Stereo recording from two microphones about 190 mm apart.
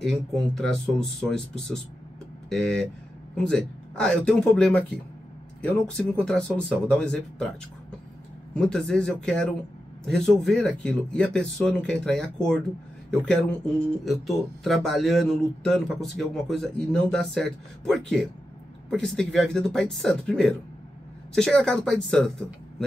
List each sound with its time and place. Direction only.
0.0 s speech: centre (ahead or behind)
8.5 s speech: 5° left (ahead or behind)